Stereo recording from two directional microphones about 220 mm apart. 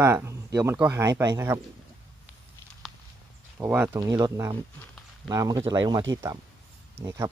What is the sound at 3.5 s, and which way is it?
Speech, 5° right (ahead or behind).